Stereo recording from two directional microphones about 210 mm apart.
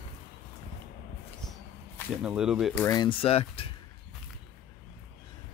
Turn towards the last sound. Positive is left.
turn(degrees=25)  # may be behind; listen again after turning